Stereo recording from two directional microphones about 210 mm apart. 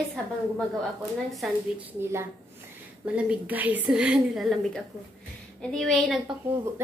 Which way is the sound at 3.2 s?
5° right (ahead or behind).